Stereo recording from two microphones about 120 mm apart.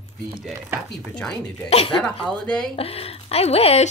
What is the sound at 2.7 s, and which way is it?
Speech, 55° left (ahead or behind).